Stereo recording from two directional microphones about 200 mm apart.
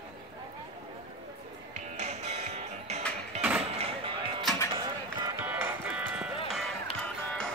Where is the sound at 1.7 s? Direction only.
35° right (ahead or behind).